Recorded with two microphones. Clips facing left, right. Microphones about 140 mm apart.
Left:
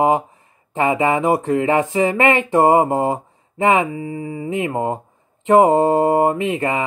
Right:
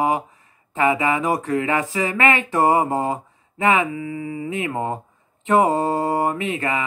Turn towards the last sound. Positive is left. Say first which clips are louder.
# left 4 dB
turn(degrees=25)  # may be behind; listen again after turning